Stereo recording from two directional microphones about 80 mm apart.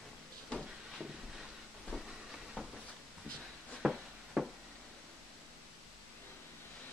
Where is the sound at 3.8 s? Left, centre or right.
Centre.